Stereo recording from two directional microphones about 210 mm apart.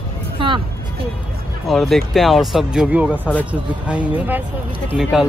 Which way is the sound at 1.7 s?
Centre (ahead or behind).